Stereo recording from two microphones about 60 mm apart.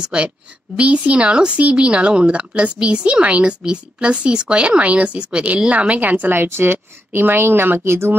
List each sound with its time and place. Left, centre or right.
0.1 s a woman's voice: centre; by 8.2 s right